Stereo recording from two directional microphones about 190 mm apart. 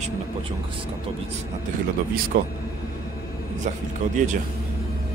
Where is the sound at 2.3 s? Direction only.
55° right (ahead or behind).